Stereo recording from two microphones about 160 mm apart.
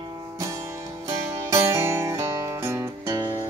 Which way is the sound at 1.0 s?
20° right (ahead or behind).